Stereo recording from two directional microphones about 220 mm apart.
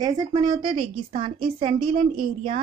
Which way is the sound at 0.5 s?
35° right (ahead or behind).